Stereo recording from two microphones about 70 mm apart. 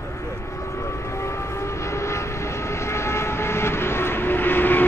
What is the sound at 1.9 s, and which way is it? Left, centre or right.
Vehicle, left.